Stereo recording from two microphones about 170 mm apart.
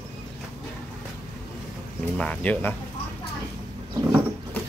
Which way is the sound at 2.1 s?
5° left (ahead or behind).